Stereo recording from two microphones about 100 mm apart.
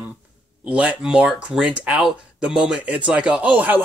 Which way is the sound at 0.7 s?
10° right (ahead or behind).